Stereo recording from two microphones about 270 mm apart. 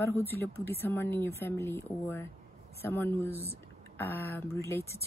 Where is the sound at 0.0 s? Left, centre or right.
Centre.